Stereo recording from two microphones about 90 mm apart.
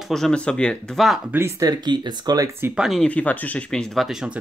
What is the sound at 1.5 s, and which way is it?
Speech, 50° right (ahead or behind).